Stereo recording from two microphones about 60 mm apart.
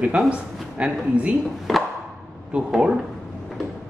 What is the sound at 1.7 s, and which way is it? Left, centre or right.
Chop, centre.